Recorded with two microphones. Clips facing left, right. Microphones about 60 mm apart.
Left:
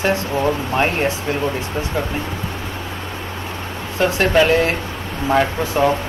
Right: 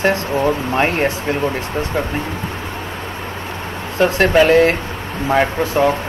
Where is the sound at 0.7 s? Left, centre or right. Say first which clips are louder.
Even; centre.